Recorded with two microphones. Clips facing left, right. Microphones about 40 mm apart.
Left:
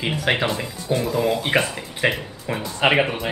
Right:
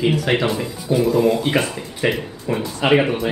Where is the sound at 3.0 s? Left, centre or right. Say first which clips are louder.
Right 3 dB; centre.